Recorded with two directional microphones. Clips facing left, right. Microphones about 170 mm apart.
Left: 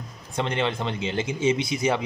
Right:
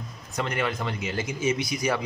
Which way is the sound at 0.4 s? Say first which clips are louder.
Left 2 dB; 25° left (ahead or behind).